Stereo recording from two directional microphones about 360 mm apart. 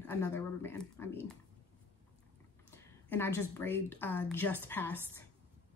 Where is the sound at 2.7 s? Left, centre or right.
Centre.